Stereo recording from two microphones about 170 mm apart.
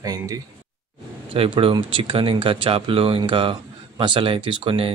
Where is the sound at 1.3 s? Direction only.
30° right (ahead or behind).